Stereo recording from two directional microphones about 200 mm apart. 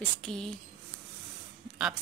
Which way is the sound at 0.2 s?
Centre (ahead or behind).